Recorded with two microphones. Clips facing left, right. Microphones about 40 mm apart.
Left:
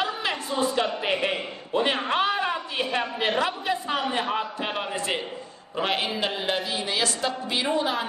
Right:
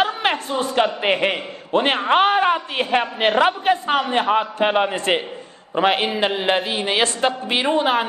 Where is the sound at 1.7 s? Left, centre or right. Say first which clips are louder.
Right 7 dB; right.